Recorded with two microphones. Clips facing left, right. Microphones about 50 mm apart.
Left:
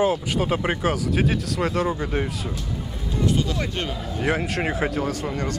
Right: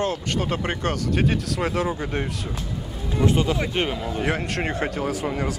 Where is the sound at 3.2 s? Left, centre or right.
Right.